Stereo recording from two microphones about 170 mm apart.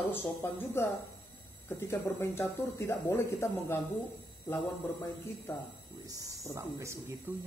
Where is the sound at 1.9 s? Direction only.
15° left (ahead or behind).